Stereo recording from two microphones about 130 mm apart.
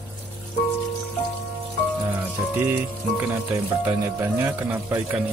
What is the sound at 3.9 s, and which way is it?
Speech, 15° right (ahead or behind).